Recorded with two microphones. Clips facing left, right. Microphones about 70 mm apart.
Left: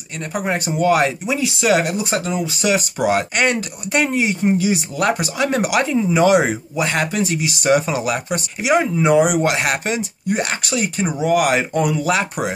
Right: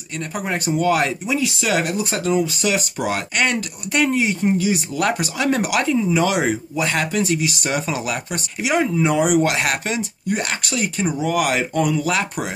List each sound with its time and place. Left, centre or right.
0.2 s speech: centre
5.5 s speech: centre
6.7 s speech: centre